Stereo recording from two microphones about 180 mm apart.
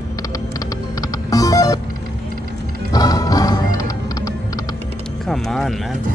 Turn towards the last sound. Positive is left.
turn(degrees=0)  # may be behind; listen again after turning